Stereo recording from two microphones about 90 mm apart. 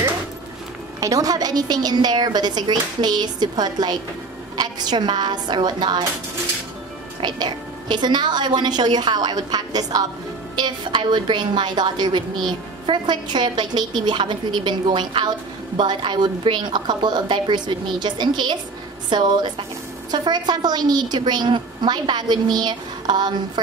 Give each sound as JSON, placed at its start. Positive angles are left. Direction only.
{"t": 1.0, "sound": "a woman's voice", "side_deg": -40}
{"t": 7.2, "sound": "a woman's voice", "side_deg": -55}
{"t": 10.5, "sound": "a woman's voice", "side_deg": -55}